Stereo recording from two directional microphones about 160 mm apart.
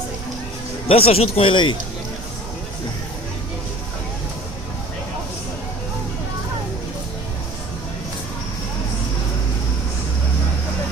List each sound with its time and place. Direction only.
0.8 s speech: 40° left (ahead or behind)